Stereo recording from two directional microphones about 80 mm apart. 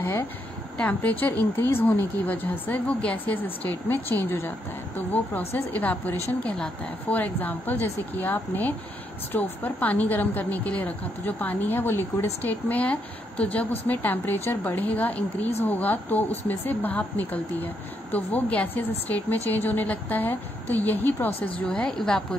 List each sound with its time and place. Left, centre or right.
0.7 s a woman's voice: centre
21.6 s a woman's voice: centre